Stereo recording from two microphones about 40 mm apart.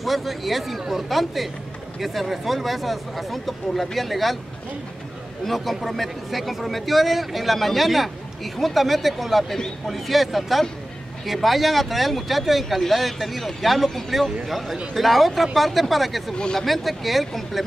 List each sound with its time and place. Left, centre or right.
0.0 s a man's voice: centre
5.4 s a man's voice: centre
16.3 s speech: left
16.6 s a man's voice: centre